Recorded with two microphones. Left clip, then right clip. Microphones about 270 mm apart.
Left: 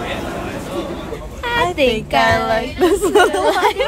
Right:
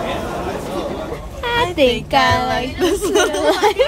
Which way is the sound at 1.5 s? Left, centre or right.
Centre.